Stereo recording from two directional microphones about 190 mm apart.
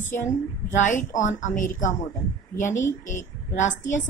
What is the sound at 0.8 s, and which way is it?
Speech, 40° left (ahead or behind).